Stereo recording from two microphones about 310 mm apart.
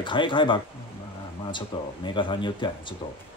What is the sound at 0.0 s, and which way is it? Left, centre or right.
Speech, centre.